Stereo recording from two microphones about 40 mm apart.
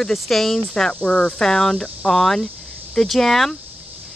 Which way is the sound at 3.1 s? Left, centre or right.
Centre.